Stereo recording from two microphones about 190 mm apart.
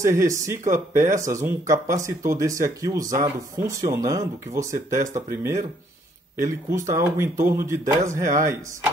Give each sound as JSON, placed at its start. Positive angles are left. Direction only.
{"t": 0.0, "sound": "speech", "side_deg": -15}